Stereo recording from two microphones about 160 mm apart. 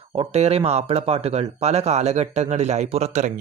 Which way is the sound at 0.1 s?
40° right (ahead or behind).